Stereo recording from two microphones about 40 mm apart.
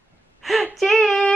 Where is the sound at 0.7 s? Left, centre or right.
Centre.